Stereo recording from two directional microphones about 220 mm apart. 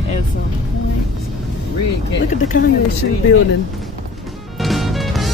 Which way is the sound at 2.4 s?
40° left (ahead or behind).